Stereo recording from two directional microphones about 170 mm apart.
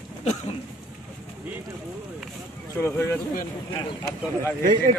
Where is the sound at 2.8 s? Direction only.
15° left (ahead or behind).